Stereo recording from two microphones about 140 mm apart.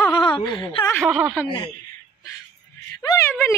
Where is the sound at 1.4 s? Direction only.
35° left (ahead or behind).